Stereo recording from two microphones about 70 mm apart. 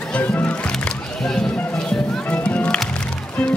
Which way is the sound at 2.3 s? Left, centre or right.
Centre.